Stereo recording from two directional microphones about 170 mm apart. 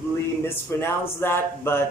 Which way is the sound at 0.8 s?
15° left (ahead or behind).